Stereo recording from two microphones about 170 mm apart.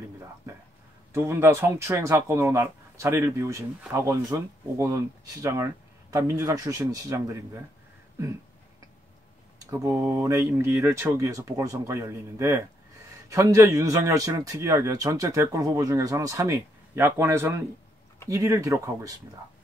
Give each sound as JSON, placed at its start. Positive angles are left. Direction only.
{"t": 1.1, "sound": "speech", "side_deg": -15}
{"t": 9.7, "sound": "a man's voice", "side_deg": -15}